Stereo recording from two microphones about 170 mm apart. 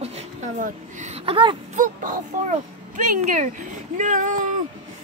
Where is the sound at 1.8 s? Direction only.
50° right (ahead or behind).